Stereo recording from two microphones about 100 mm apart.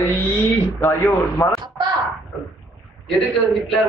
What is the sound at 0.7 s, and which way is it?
Speech, 30° left (ahead or behind).